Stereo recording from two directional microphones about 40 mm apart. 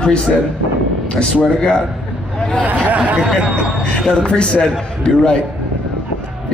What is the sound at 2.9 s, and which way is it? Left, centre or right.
Speech, right.